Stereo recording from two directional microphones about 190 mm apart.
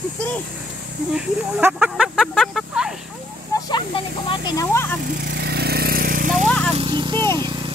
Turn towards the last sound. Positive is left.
turn(degrees=-25)  # may be behind; listen again after turning